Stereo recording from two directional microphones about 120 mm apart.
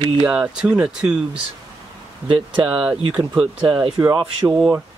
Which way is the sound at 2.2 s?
45° right (ahead or behind).